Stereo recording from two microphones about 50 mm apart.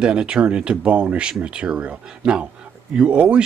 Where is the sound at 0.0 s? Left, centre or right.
Centre.